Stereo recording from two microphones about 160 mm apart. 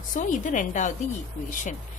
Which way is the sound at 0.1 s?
55° left (ahead or behind).